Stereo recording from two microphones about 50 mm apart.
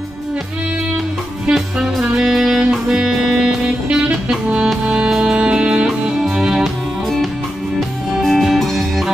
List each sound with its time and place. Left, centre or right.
1.5 s music: centre
6.6 s music: centre